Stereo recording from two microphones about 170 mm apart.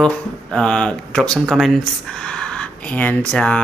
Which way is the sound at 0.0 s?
5° left (ahead or behind).